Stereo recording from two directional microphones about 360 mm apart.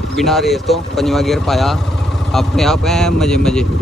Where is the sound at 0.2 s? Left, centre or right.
Centre.